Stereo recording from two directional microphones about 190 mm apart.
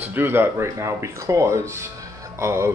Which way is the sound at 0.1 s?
10° right (ahead or behind).